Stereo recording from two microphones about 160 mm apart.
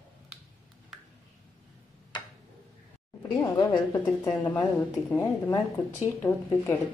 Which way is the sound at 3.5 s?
25° left (ahead or behind).